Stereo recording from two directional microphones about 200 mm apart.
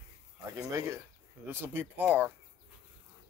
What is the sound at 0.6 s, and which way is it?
Speech, 15° right (ahead or behind).